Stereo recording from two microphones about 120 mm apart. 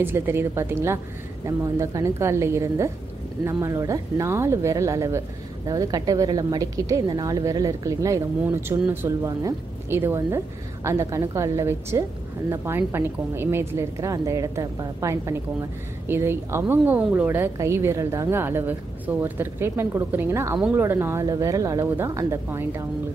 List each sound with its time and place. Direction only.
0.0 s a woman's voice: 20° right (ahead or behind)
20.5 s speech: 10° right (ahead or behind)
20.8 s a woman's voice: 20° right (ahead or behind)